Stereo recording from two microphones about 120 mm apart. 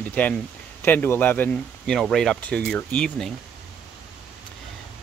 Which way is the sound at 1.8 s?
5° left (ahead or behind).